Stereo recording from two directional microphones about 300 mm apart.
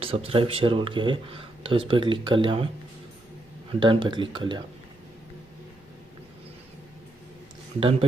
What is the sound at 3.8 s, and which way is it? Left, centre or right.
Speech, centre.